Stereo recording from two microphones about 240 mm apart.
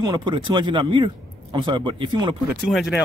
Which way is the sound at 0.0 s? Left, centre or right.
Centre.